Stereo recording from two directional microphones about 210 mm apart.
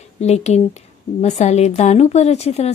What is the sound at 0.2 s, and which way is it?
Speech, 30° left (ahead or behind).